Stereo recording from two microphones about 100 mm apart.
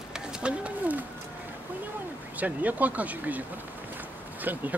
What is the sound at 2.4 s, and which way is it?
Speech, 15° right (ahead or behind).